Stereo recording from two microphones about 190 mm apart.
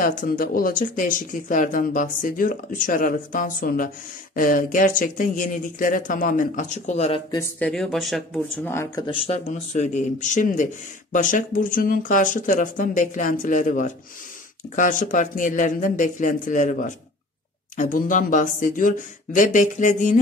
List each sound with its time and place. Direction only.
0.0 s a man's voice: 45° left (ahead or behind)
7.2 s speech: 10° left (ahead or behind)
8.6 s speech: 15° left (ahead or behind)
9.0 s speech: 30° left (ahead or behind)
9.5 s a man's voice: 40° left (ahead or behind)